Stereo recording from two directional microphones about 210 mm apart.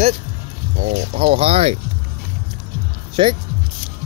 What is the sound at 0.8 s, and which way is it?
Speech, 30° right (ahead or behind).